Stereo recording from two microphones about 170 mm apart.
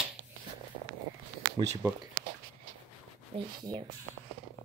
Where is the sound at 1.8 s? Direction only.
15° right (ahead or behind).